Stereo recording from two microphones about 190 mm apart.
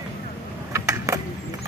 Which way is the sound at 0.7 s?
15° right (ahead or behind).